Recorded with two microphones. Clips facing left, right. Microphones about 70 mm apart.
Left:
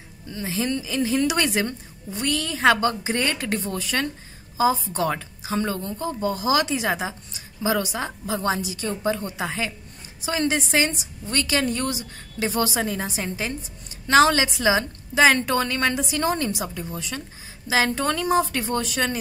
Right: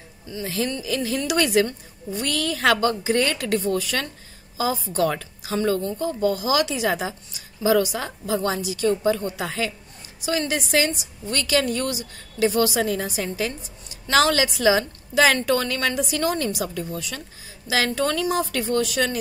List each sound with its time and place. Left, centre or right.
0.4 s a woman's voice: left
18.8 s speech: left